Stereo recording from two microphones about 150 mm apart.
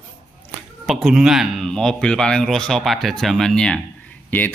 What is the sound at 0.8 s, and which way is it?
A man's voice, centre (ahead or behind).